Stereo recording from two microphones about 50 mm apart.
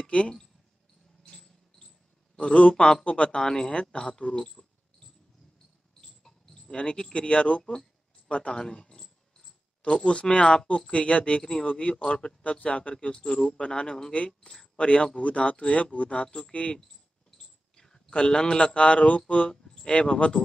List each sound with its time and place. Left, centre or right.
0.0 s a sound: left
1.3 s a sound: centre
2.3 s a man's voice: centre
4.5 s cricket: centre
6.6 s speech: centre
10.0 s speech: left
12.4 s speech: left
12.9 s speech: centre
13.5 s speech: left
14.1 s speech: left
17.4 s speech: centre